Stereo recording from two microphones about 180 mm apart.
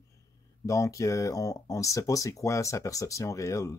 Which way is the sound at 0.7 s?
20° left (ahead or behind).